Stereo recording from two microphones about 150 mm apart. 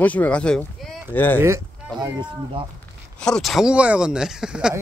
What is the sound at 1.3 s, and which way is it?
Speech, 20° right (ahead or behind).